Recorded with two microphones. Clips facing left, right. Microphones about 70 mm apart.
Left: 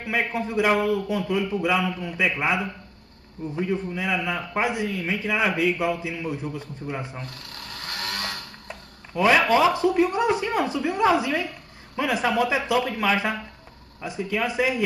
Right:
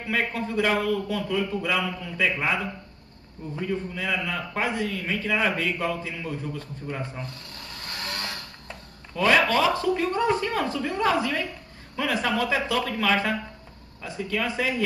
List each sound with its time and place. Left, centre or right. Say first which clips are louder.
0.1 s a man's voice: left 1 dB; centre
8.2 s a man's voice: left 2 dB; centre